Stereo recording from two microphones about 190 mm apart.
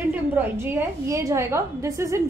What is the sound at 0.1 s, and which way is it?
A woman's voice, 10° right (ahead or behind).